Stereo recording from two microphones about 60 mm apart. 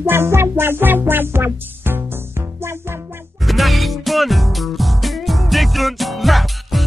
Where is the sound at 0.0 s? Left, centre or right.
Right.